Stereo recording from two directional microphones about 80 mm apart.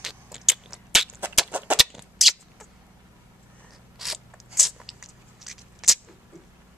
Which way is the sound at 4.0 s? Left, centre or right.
Centre.